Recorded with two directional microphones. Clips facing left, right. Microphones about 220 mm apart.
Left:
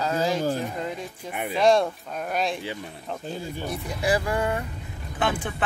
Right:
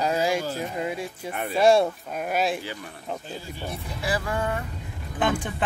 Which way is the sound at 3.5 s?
15° left (ahead or behind).